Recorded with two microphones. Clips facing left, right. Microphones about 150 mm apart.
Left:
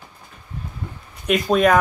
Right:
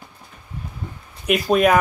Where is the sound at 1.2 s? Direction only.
5° right (ahead or behind).